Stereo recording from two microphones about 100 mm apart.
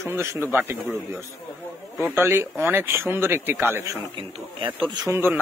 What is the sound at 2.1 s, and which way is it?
A man's voice, 20° right (ahead or behind).